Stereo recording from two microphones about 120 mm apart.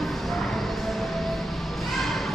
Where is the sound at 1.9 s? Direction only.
Centre (ahead or behind).